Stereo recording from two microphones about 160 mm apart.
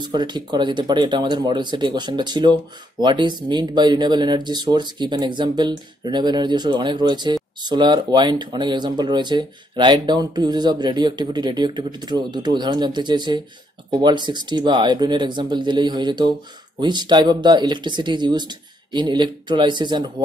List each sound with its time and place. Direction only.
0.0 s speech: 25° right (ahead or behind)